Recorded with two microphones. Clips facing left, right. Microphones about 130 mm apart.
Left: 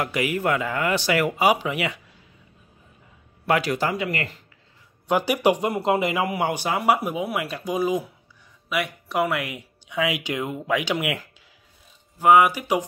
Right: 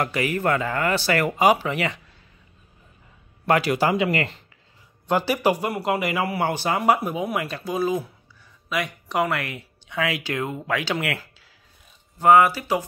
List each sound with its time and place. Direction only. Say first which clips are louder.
0.0 s speech: right 1 dB; 10° left (ahead or behind)
3.4 s a man's voice: right 2 dB; centre (ahead or behind)
5.0 s speech: left 1 dB; 10° left (ahead or behind)